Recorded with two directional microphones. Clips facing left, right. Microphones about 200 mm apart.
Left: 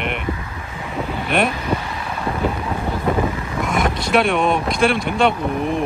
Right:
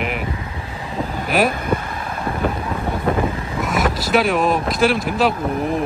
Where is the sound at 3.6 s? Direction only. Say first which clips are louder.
Even; 5° right (ahead or behind).